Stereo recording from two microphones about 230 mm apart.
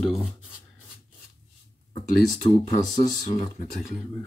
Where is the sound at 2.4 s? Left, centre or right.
Centre.